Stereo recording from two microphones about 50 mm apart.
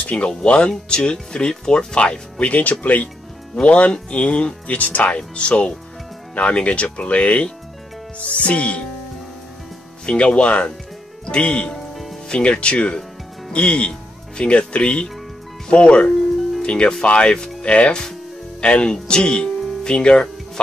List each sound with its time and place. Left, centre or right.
0.0 s speech: left
2.5 s speech: left
10.0 s speech: left
11.9 s music: centre
12.3 s speech: left
17.4 s music: centre
17.6 s speech: left
19.6 s music: centre